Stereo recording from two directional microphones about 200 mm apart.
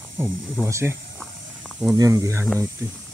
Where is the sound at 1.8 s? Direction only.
15° right (ahead or behind).